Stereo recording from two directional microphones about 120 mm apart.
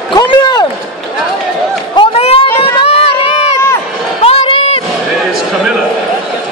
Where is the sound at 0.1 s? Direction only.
40° left (ahead or behind).